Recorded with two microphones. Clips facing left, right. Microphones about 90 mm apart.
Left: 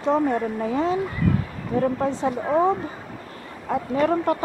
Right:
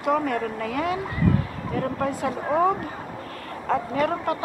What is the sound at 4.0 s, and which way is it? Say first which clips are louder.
Speech: left 7 dB; 35° left (ahead or behind).